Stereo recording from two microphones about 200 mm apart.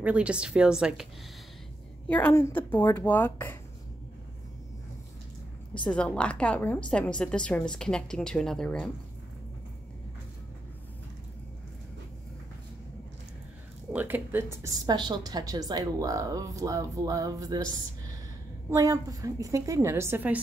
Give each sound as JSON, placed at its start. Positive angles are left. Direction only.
{"t": 0.0, "sound": "a woman's voice", "side_deg": -5}
{"t": 2.0, "sound": "a woman's voice", "side_deg": 5}
{"t": 5.9, "sound": "a woman's voice", "side_deg": 5}
{"t": 13.9, "sound": "a woman's voice", "side_deg": -10}